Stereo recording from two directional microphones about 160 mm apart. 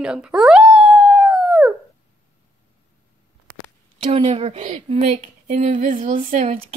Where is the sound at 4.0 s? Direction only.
40° right (ahead or behind).